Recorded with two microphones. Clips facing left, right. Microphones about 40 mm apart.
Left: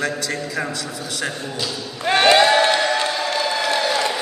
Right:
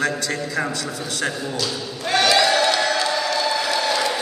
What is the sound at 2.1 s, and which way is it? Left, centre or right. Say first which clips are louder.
Crowd: left 3 dB; left.